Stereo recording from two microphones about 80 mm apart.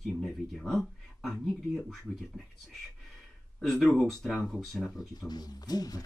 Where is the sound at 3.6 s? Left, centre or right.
Centre.